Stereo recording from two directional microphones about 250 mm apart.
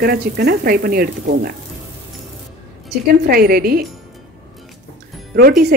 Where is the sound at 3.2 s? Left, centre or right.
Right.